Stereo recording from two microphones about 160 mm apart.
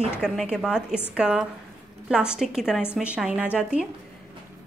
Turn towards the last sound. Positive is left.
turn(degrees=-10)  # may be behind; listen again after turning